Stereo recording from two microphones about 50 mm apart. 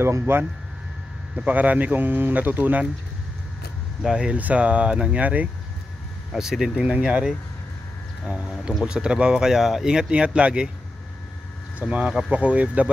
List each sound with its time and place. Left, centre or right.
0.2 s speech: right
1.3 s speech: right
4.0 s speech: centre
4.4 s speech: right
6.3 s speech: centre
6.8 s speech: right
8.3 s speech: right
11.8 s speech: right